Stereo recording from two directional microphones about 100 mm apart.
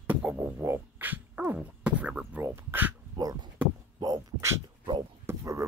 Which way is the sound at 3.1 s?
50° right (ahead or behind).